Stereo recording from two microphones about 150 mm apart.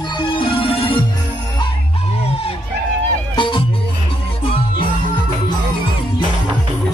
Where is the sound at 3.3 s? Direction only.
35° left (ahead or behind).